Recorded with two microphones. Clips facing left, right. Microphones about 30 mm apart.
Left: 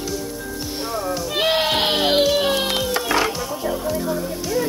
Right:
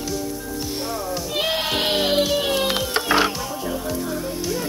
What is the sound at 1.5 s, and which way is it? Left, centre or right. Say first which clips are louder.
Music: left 4 dB; left.